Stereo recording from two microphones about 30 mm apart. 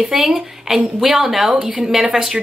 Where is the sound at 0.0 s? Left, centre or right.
Centre.